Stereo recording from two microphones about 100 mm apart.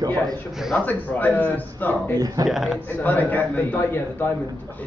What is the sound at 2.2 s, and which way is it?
Speech, 40° right (ahead or behind).